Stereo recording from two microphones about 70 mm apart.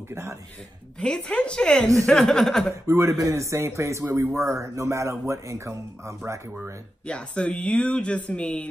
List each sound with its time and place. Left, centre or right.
0.1 s speech: right
0.9 s speech: centre
2.0 s chuckle: centre
2.7 s speech: right
7.1 s speech: centre